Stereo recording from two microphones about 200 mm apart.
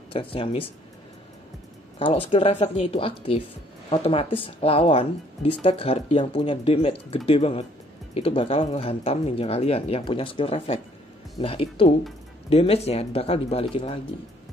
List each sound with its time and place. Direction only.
0.1 s speech: 25° left (ahead or behind)
2.0 s speech: 25° left (ahead or behind)